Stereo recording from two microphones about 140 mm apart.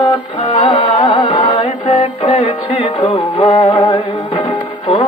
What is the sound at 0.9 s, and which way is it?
Music, 40° left (ahead or behind).